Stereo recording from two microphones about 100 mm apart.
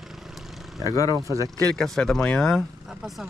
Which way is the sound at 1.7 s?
5° left (ahead or behind).